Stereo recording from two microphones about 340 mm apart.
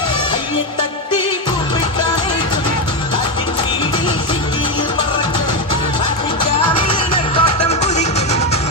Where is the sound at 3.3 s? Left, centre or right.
Centre.